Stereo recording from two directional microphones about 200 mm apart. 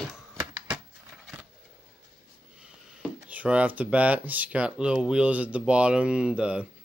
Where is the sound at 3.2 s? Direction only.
5° right (ahead or behind).